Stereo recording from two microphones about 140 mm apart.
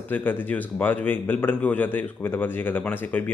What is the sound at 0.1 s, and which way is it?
Speech, 15° left (ahead or behind).